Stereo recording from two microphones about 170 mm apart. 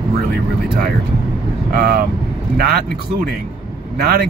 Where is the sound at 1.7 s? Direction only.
60° right (ahead or behind).